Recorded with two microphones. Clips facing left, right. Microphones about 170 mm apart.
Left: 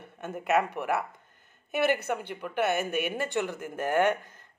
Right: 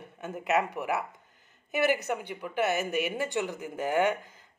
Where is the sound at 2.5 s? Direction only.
60° left (ahead or behind).